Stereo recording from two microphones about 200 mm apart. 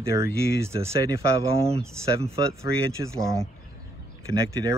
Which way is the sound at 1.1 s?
30° right (ahead or behind).